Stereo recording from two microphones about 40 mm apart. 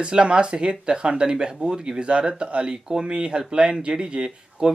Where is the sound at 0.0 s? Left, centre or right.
Right.